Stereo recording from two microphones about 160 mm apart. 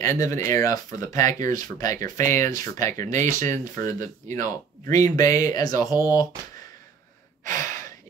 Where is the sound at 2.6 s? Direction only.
20° left (ahead or behind).